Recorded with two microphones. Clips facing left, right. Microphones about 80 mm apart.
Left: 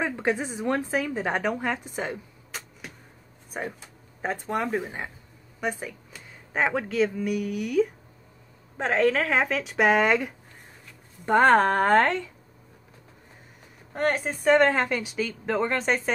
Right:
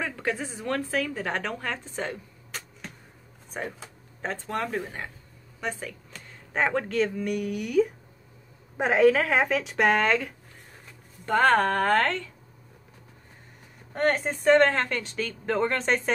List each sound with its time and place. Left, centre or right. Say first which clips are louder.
0.0 s a woman's voice: left 4 dB; left
13.9 s a woman's voice: right 1 dB; centre